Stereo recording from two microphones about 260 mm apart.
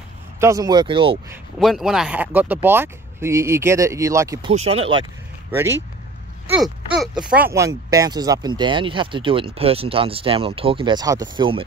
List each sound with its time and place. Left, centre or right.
0.4 s speech: centre
1.3 s speech: centre; by 5.0 s right
6.5 s speech: centre